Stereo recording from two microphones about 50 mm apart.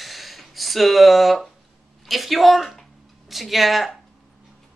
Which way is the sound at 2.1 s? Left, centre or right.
Centre.